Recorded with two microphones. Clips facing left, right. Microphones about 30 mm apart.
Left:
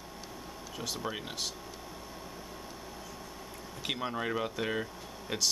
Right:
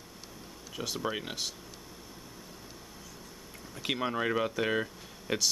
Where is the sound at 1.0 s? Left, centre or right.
Centre.